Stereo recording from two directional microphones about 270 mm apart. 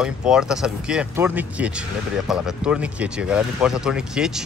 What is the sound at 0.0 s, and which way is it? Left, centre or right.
Speech, centre.